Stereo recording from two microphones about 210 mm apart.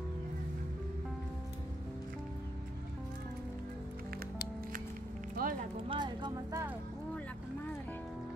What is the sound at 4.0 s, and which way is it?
Music, 45° right (ahead or behind).